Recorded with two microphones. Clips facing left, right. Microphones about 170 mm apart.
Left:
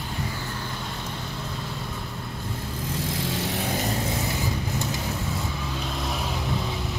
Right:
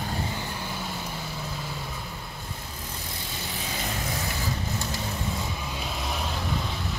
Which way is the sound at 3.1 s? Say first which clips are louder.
Left 9 dB; 90° left.